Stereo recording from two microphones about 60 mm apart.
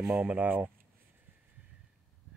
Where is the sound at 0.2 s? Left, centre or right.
Right.